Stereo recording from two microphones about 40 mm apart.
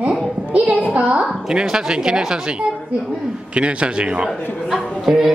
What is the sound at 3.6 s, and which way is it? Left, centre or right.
Speech, right.